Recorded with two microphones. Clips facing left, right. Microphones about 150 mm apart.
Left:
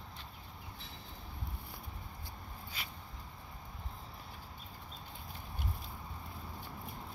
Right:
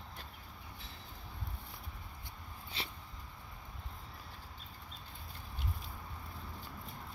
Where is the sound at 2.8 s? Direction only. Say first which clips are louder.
Right 4 dB; 30° right (ahead or behind).